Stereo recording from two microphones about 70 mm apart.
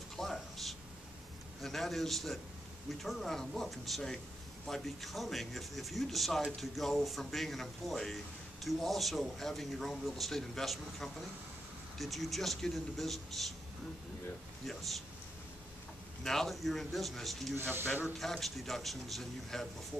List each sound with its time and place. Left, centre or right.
0.2 s a sound: centre
1.6 s speech: centre
14.7 s speech: centre
16.3 s speech: centre
17.6 s speech: right
18.2 s speech: centre